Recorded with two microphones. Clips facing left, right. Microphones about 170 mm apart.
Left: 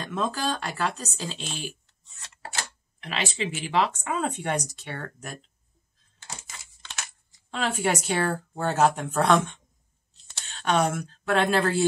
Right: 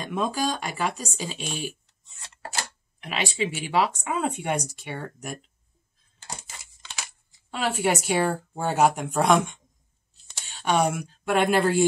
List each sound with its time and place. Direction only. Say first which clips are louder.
0.0 s speech: right 2 dB; 15° right (ahead or behind)
3.0 s speech: right 2 dB; 10° right (ahead or behind)
7.5 s a woman's voice: right 1 dB; 5° right (ahead or behind)